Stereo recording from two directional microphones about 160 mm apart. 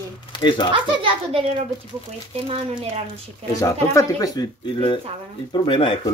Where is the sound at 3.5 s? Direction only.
20° left (ahead or behind).